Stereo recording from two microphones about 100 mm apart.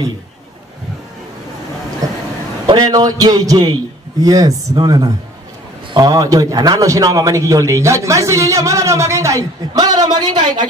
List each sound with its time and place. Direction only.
2.6 s a man's voice: 40° right (ahead or behind)